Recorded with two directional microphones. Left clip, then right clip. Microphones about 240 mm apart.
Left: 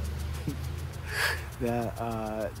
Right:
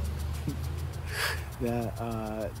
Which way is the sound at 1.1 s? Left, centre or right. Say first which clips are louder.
Left 3 dB; centre.